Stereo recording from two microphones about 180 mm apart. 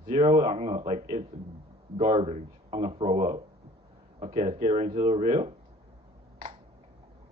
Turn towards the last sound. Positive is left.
turn(degrees=-35)  # may be behind; listen again after turning